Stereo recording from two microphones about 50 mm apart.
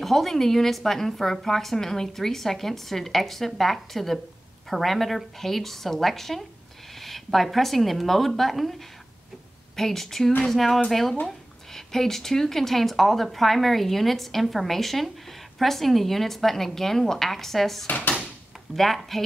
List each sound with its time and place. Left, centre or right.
0.0 s a woman's voice: centre
9.8 s a woman's voice: centre
17.8 s speech: left
18.8 s a woman's voice: centre